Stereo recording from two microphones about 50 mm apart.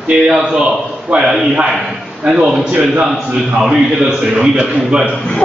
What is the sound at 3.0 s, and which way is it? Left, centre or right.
A man's voice, centre.